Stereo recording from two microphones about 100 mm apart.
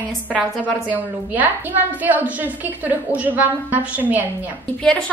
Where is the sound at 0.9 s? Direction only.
15° right (ahead or behind).